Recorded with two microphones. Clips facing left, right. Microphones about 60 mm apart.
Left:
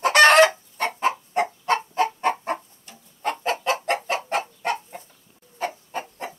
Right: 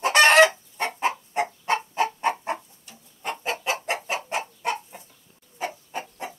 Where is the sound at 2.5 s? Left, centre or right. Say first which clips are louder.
Left 2 dB; left.